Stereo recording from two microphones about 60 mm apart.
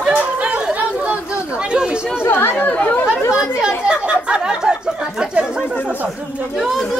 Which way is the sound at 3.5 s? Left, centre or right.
Centre.